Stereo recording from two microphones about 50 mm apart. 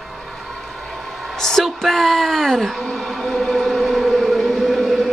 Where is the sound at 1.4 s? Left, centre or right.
Centre.